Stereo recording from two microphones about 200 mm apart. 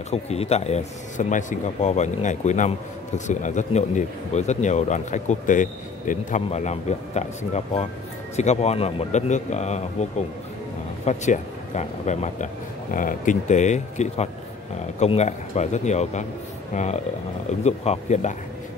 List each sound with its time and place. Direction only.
0.1 s speech: 30° left (ahead or behind)